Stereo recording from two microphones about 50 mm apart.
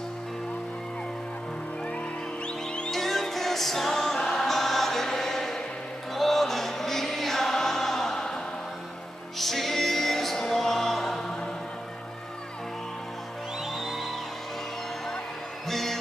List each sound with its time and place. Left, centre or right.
2.4 s music: left
2.9 s music: centre
9.4 s music: centre
13.7 s music: centre
15.7 s music: centre